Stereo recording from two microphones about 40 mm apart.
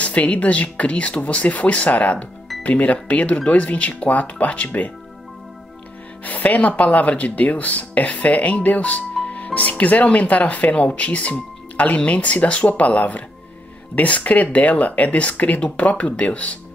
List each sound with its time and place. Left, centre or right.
0.0 s speech: left
6.2 s music: left
6.7 s speech: left